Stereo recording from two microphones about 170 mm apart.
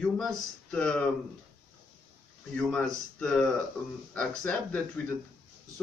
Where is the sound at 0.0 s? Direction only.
5° left (ahead or behind).